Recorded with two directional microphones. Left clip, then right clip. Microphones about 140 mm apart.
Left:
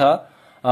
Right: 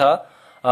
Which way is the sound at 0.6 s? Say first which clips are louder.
Right 1 dB; 15° right (ahead or behind).